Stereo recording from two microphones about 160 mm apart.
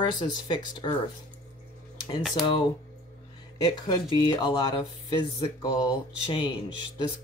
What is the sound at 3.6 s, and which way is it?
Speech, 25° left (ahead or behind).